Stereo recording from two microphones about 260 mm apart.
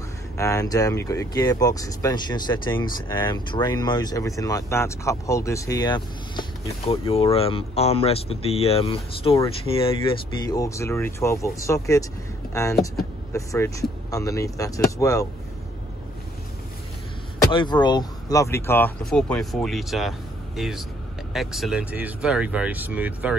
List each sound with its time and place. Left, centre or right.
0.4 s speech: centre
13.3 s speech: centre
17.5 s speech: centre